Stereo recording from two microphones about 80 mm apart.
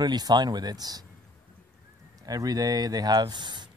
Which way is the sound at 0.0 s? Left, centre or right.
Right.